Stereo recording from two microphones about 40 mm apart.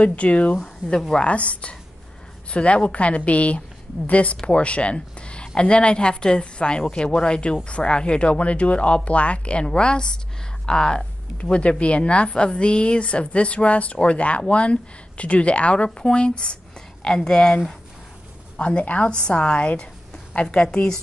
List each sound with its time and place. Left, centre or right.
0.0 s a woman's voice: left
11.3 s a woman's voice: left
18.6 s speech: left
19.0 s a woman's voice: left